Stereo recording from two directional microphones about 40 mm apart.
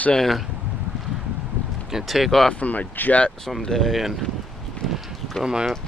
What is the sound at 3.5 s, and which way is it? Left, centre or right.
Speech, centre.